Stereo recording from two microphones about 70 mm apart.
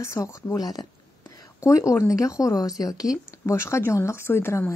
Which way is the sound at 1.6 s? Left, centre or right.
Left.